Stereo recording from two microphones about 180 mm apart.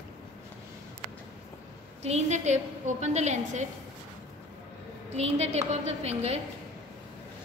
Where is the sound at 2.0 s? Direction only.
40° right (ahead or behind).